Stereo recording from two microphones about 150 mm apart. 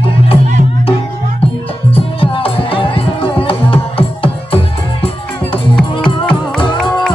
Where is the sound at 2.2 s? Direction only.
35° left (ahead or behind).